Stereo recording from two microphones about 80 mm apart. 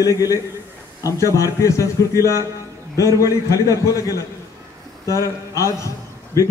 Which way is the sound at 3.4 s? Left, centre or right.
Left.